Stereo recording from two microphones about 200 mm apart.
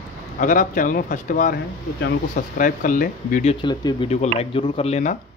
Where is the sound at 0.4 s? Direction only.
40° left (ahead or behind).